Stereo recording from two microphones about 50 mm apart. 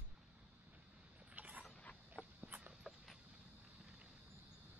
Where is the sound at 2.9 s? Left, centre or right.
Centre.